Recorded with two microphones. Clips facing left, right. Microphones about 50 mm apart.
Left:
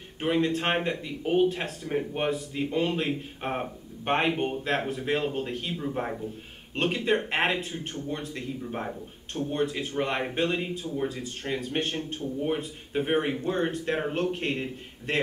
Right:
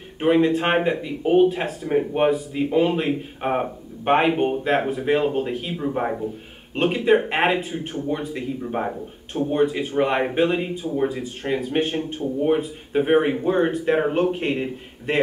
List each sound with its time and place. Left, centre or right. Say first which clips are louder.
0.2 s speech: right 8 dB; centre
6.7 s speech: right 7 dB; centre